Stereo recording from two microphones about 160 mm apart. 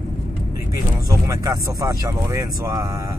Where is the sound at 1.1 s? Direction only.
20° right (ahead or behind).